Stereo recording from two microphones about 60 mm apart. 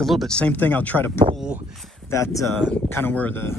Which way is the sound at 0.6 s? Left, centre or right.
Left.